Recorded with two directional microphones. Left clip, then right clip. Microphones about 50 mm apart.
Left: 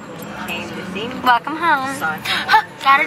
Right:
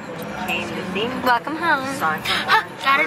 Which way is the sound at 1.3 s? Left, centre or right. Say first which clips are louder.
Left 4 dB; centre.